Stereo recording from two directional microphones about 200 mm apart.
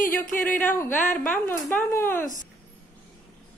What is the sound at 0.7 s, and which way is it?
Speech, 10° left (ahead or behind).